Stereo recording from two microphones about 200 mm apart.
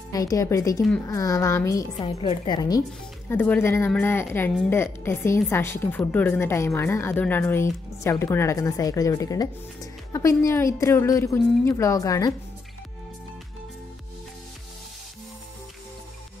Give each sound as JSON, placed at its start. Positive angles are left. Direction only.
{"t": 0.1, "sound": "a woman's voice", "side_deg": 15}
{"t": 3.3, "sound": "a woman's voice", "side_deg": 10}